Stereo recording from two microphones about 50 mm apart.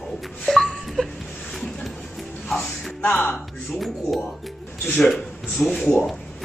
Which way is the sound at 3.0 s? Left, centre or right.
Left.